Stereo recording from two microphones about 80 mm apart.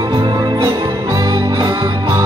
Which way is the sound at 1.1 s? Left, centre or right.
Right.